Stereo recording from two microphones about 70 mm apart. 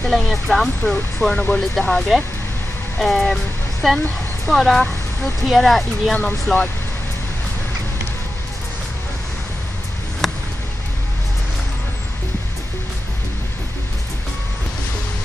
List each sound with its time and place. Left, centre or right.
0.1 s speech: centre
1.3 s speech: centre
2.0 s speech: centre
6.1 s speech: left
10.2 s a sound: centre